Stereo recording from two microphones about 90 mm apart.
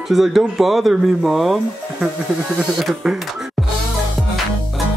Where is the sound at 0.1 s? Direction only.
Centre (ahead or behind).